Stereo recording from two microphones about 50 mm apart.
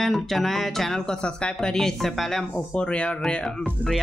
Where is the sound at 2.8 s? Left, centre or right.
Left.